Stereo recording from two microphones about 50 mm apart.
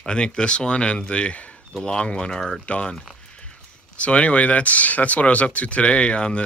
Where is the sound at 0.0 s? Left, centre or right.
Centre.